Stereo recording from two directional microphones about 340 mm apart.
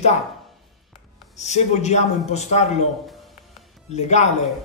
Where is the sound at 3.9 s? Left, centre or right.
Centre.